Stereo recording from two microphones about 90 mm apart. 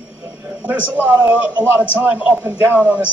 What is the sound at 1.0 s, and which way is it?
A man's voice, 15° right (ahead or behind).